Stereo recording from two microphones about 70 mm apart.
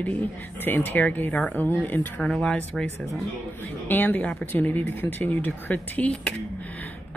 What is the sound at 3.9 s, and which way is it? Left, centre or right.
Speech, left.